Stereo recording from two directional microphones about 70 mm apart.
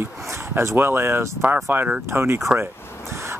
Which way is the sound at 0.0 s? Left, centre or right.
Right.